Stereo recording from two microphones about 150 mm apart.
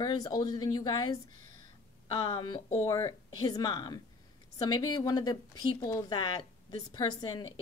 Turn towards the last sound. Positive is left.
turn(degrees=30)  # may be behind; listen again after turning